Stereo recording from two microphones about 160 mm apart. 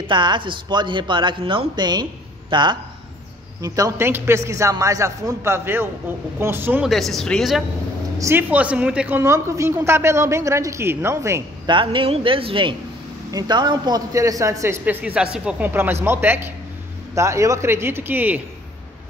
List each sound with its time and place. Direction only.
0.0 s a man's voice: 30° right (ahead or behind); by 6.9 s 10° right (ahead or behind)
6.9 s speech: centre (ahead or behind)
8.2 s a man's voice: 15° right (ahead or behind)
11.6 s a man's voice: 30° right (ahead or behind); by 18.4 s 10° right (ahead or behind)